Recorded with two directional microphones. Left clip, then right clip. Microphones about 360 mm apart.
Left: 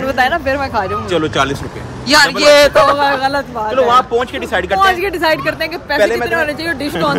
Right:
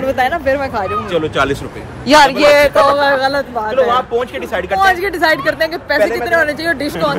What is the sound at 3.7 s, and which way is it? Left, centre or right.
Speech, left.